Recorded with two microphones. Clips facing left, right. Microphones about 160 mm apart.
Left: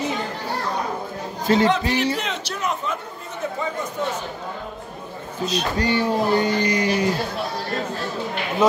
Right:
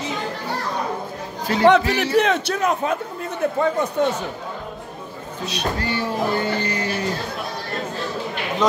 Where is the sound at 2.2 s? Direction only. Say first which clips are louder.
Right 7 dB; 60° right (ahead or behind).